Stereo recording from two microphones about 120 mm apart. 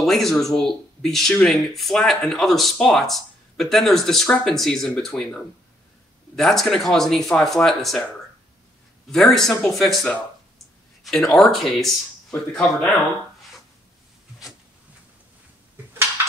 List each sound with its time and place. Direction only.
0.0 s speech: centre (ahead or behind)
9.1 s speech: 5° left (ahead or behind)